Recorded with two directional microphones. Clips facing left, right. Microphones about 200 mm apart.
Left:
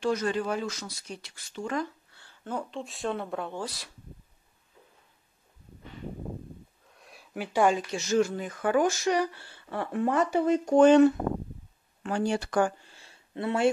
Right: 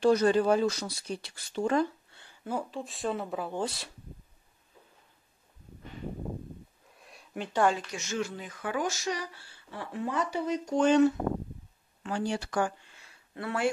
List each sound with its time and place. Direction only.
0.0 s speech: 35° right (ahead or behind)
2.1 s speech: 10° right (ahead or behind)
3.5 s speech: 25° right (ahead or behind)
7.0 s a sound: centre (ahead or behind)
7.9 s speech: 35° left (ahead or behind)
12.9 s a sound: 30° left (ahead or behind)